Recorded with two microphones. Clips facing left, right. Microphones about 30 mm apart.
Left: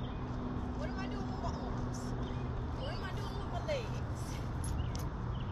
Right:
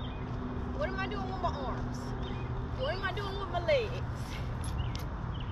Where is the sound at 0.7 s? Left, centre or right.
Right.